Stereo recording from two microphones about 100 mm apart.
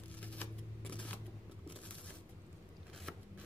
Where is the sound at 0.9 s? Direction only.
10° left (ahead or behind).